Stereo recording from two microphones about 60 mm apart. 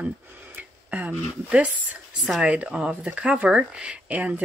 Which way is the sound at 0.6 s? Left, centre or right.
Right.